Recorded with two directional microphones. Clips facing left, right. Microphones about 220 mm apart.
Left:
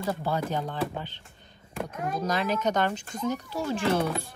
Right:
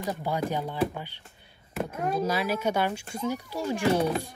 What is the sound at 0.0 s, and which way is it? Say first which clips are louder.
A woman's voice: even; 15° right (ahead or behind).